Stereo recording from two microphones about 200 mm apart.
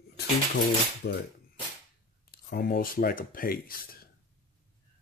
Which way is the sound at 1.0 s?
55° left (ahead or behind).